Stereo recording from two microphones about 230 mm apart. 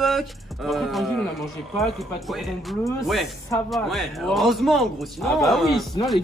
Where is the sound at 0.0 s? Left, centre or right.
Centre.